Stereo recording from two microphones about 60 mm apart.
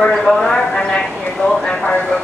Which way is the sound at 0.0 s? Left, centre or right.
Centre.